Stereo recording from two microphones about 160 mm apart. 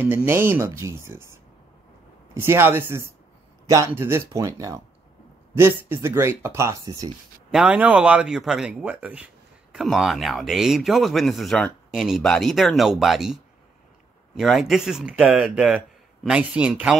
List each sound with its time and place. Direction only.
0.0 s speech: 15° right (ahead or behind)
7.5 s speech: 5° right (ahead or behind)
14.4 s speech: centre (ahead or behind)